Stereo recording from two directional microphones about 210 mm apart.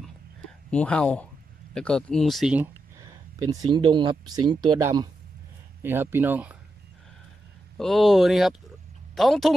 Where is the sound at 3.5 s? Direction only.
25° right (ahead or behind); by 6.5 s 10° right (ahead or behind).